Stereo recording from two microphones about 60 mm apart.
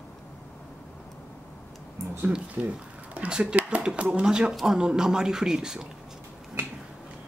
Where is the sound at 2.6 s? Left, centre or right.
Centre.